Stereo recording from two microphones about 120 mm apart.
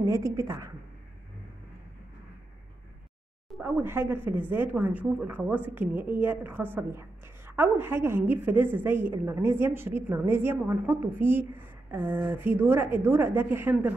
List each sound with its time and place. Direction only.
0.0 s a woman's voice: 25° right (ahead or behind)
3.6 s speech: 15° right (ahead or behind)